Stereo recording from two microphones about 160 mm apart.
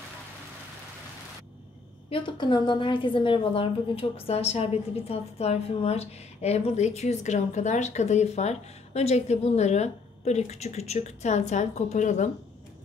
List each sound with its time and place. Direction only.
2.0 s a woman's voice: 30° left (ahead or behind); by 12.3 s 50° left (ahead or behind)